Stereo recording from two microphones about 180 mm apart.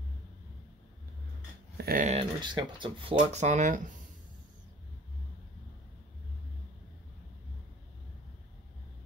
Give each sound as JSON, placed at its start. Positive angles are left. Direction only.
{"t": 1.8, "sound": "dog", "side_deg": -55}
{"t": 2.0, "sound": "speech", "side_deg": -30}
{"t": 3.2, "sound": "speech", "side_deg": -40}